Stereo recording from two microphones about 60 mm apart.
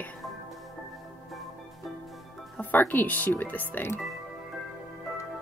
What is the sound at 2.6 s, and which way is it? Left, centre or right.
Speech, left.